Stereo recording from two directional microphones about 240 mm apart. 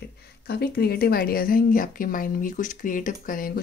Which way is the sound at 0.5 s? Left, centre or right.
Left.